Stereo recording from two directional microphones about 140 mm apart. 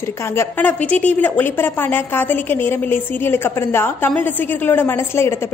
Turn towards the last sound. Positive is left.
turn(degrees=15)  # may be behind; listen again after turning